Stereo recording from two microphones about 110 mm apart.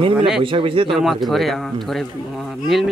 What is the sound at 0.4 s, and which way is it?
Speech, 50° right (ahead or behind).